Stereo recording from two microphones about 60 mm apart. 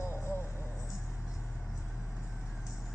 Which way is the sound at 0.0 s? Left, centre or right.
Left.